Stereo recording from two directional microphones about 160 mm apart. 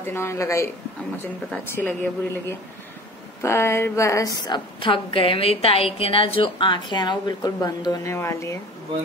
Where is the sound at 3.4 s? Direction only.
15° left (ahead or behind).